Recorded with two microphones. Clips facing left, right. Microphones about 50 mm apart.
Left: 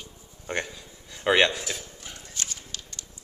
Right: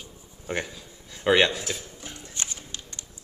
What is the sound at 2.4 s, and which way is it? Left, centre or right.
Music, right.